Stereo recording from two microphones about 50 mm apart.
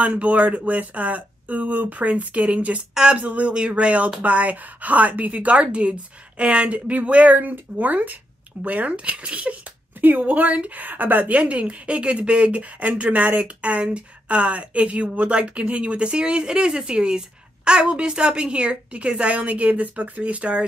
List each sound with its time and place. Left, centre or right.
0.0 s speech: right
2.9 s speech: centre
3.2 s a woman's voice: right